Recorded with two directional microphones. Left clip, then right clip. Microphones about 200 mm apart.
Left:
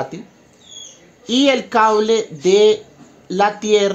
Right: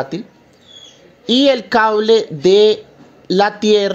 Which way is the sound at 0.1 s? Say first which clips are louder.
Right 8 dB; 25° right (ahead or behind).